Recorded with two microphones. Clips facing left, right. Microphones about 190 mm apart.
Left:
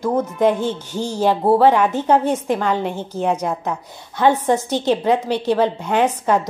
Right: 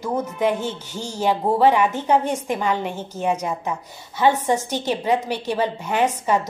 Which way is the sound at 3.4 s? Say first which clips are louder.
Left 3 dB; 60° left (ahead or behind).